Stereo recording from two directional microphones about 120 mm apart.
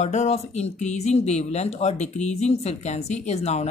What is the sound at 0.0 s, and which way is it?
Speech, 75° left (ahead or behind).